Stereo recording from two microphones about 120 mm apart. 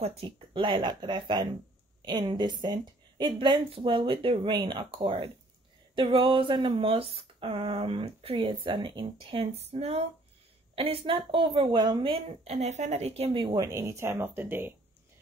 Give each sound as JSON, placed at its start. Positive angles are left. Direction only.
{"t": 0.0, "sound": "a woman's voice", "side_deg": -55}
{"t": 4.9, "sound": "speech", "side_deg": -50}
{"t": 12.5, "sound": "a woman's voice", "side_deg": -70}
{"t": 13.4, "sound": "a woman's voice", "side_deg": -40}
{"t": 13.7, "sound": "speech", "side_deg": -25}